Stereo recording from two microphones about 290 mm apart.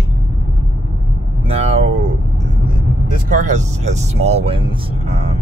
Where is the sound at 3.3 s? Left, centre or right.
Right.